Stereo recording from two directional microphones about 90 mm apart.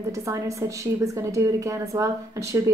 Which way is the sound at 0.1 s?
35° right (ahead or behind).